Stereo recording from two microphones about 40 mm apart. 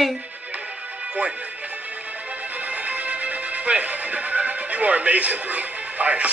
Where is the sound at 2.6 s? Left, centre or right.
Right.